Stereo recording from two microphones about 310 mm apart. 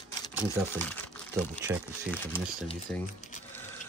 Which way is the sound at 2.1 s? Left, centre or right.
Centre.